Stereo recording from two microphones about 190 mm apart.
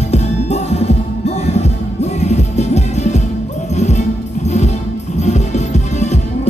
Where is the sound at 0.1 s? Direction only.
35° left (ahead or behind).